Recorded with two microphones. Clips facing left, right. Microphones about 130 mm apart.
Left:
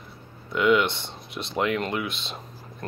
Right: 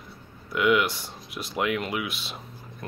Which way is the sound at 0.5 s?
5° right (ahead or behind).